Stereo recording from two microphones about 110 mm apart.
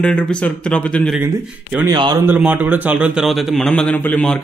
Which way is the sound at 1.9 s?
40° right (ahead or behind).